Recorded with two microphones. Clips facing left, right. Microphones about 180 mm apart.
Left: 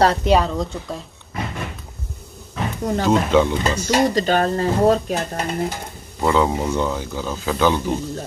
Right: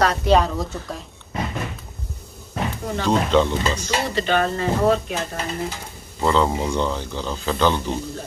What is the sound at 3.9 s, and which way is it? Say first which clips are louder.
Speech: left 6 dB; 40° left (ahead or behind).